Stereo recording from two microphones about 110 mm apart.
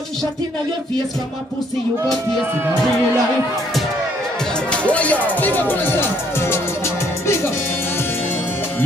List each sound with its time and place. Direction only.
4.6 s speech: 10° left (ahead or behind)